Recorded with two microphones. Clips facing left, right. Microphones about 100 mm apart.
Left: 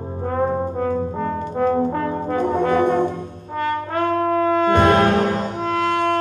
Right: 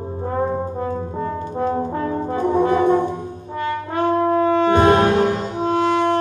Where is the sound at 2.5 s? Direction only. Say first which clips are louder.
Right 3 dB; 25° right (ahead or behind).